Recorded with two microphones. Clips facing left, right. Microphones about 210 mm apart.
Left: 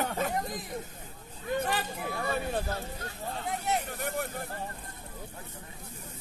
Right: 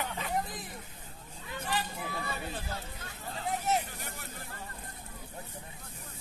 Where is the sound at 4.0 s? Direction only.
55° left (ahead or behind).